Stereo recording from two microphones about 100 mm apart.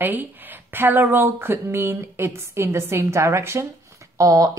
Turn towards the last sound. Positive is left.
turn(degrees=-35)  # may be behind; listen again after turning